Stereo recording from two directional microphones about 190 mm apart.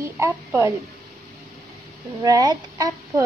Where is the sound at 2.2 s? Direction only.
20° right (ahead or behind).